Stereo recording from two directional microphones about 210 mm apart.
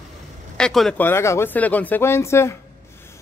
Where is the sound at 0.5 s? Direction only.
Centre (ahead or behind).